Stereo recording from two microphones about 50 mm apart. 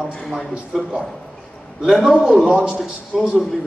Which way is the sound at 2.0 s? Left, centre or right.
Centre.